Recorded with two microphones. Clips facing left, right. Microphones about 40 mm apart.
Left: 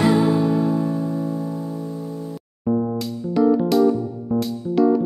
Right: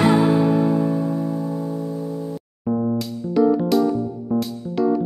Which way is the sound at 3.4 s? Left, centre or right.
Centre.